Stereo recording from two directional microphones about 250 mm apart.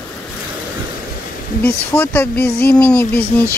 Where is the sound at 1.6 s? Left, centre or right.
Centre.